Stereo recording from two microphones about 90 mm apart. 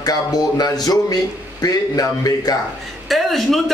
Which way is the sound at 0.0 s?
45° left (ahead or behind).